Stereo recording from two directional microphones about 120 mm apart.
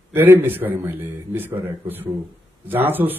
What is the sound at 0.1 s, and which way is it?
Speech, 15° right (ahead or behind).